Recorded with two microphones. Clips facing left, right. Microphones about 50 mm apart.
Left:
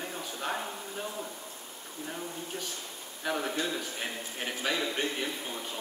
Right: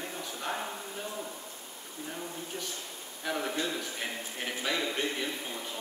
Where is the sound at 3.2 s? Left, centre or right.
Centre.